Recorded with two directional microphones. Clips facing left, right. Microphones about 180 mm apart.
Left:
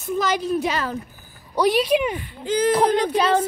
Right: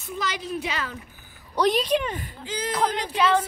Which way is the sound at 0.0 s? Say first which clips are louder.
Left 8 dB; 45° left (ahead or behind).